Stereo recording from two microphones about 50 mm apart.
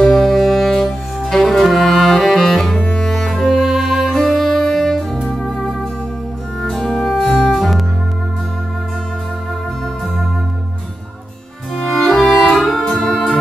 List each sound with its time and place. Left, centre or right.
0.1 s music: centre
4.2 s saxophone: centre
5.3 s music: centre
11.8 s music: centre
12.8 s music: centre